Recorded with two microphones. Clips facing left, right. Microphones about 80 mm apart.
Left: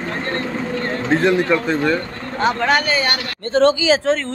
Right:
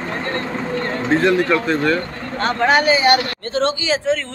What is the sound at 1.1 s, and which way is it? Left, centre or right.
Speech, centre.